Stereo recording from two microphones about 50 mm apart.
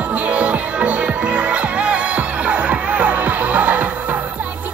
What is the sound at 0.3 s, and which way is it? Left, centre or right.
Music, right.